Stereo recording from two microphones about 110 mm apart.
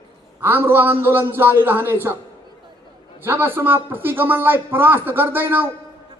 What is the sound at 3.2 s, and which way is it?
Speech, 20° right (ahead or behind).